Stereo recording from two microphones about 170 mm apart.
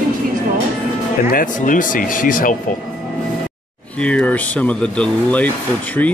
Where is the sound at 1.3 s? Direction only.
55° left (ahead or behind).